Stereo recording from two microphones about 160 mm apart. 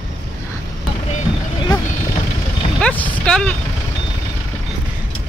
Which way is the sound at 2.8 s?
10° left (ahead or behind).